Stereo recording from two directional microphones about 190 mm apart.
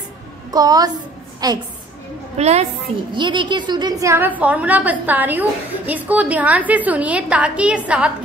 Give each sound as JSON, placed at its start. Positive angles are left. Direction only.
{"t": 0.5, "sound": "a woman's voice", "side_deg": -20}
{"t": 2.3, "sound": "a woman's voice", "side_deg": -35}
{"t": 3.1, "sound": "a woman's voice", "side_deg": -25}